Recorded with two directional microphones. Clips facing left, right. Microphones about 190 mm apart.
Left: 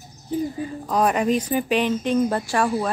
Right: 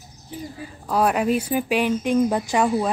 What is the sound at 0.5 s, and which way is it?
Speech, 5° right (ahead or behind).